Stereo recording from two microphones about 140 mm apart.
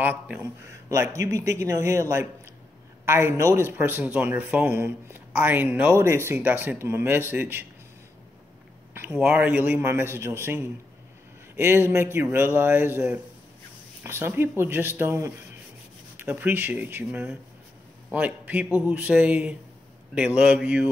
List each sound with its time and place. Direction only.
0.0 s a man's voice: 10° right (ahead or behind)
8.9 s a man's voice: 10° right (ahead or behind)